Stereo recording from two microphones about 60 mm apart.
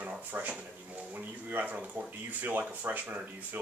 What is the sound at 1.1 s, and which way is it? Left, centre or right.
Speech, right.